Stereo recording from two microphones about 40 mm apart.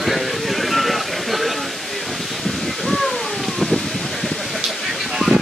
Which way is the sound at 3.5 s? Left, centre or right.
Centre.